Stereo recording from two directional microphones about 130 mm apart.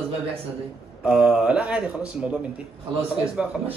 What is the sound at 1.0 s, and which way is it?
A man's voice, 10° right (ahead or behind).